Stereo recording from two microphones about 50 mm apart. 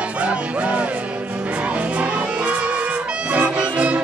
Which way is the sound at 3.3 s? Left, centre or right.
Right.